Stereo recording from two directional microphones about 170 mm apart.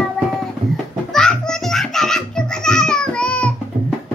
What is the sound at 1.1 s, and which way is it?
Music, 5° left (ahead or behind).